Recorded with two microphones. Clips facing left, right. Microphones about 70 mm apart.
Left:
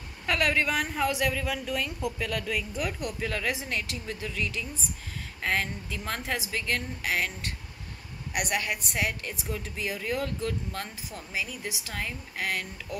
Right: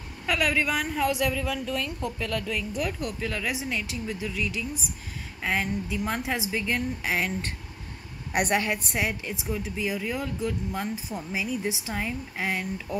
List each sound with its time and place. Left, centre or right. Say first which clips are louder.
0.3 s a woman's voice: right 1 dB; centre
7.0 s a sound: right 2 dB; right
8.3 s a woman's voice: right 5 dB; right